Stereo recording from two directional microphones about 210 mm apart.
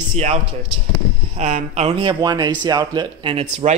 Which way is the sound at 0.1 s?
30° right (ahead or behind).